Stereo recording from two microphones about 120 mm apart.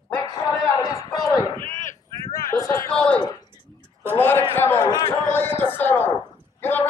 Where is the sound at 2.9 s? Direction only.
10° left (ahead or behind).